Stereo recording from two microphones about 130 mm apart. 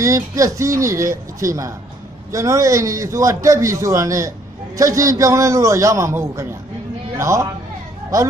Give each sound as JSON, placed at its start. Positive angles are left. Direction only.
{"t": 0.0, "sound": "a man's voice", "side_deg": -25}